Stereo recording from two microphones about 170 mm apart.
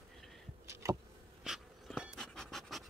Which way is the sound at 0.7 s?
15° right (ahead or behind).